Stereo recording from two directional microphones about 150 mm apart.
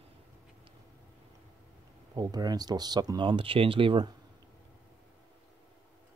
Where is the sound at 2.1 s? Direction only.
25° right (ahead or behind).